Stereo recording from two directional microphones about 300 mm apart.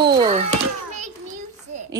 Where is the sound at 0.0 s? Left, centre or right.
Centre.